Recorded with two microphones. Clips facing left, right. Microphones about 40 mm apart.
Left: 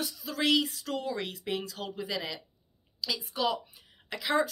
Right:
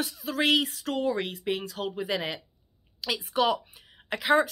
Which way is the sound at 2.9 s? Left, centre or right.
Right.